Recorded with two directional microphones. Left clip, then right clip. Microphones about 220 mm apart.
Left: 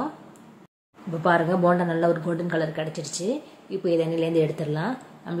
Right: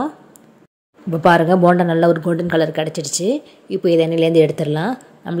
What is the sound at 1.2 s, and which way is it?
Speech, 40° right (ahead or behind).